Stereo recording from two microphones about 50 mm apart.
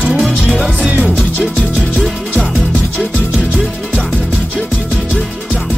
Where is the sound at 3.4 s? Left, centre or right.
Right.